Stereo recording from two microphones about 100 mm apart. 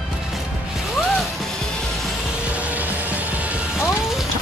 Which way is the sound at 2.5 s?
15° right (ahead or behind).